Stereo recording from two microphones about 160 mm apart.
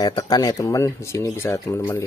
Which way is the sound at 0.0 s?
25° left (ahead or behind).